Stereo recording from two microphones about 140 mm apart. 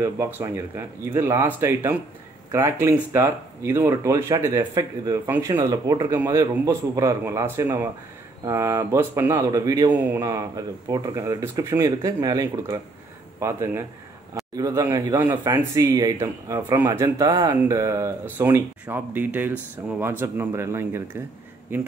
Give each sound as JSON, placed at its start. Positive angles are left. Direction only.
{"t": 0.0, "sound": "speech", "side_deg": -15}